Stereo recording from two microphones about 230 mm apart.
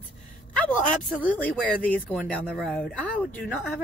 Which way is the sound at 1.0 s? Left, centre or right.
Centre.